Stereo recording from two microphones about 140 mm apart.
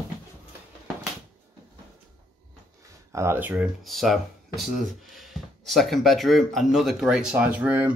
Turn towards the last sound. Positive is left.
turn(degrees=-10)  # may be behind; listen again after turning